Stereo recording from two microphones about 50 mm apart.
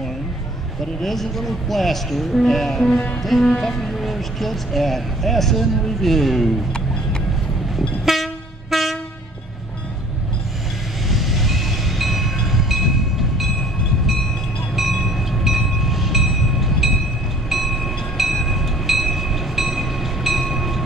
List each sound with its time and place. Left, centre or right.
1.0 s speech: centre
6.7 s music: centre
7.7 s train: centre
11.1 s train: centre
14.8 s train: centre